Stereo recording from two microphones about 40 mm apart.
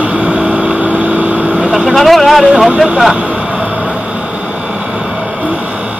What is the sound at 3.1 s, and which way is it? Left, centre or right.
Vehicle, right.